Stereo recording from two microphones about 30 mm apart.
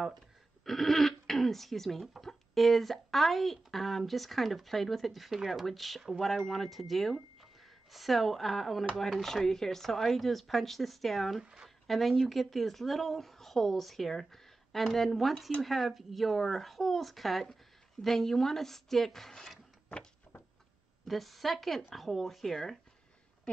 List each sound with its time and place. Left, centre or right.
0.7 s a woman's voice: centre
6.2 s a woman's voice: centre
12.1 s a woman's voice: centre
21.1 s a woman's voice: centre